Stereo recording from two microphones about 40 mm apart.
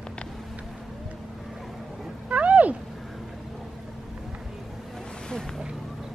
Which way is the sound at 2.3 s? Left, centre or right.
Right.